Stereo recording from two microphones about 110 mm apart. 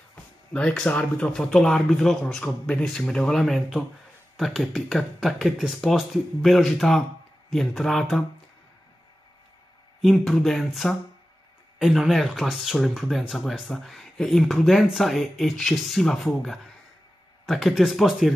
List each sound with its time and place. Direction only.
0.1 s speech: 10° left (ahead or behind)
10.0 s speech: centre (ahead or behind)